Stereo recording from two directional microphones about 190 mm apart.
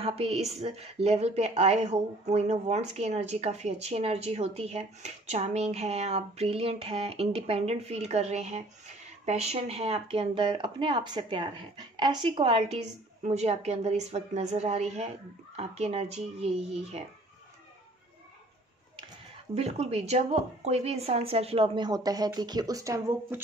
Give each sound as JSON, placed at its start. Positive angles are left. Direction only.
{"t": 0.0, "sound": "a woman's voice", "side_deg": -30}
{"t": 19.5, "sound": "a woman's voice", "side_deg": -35}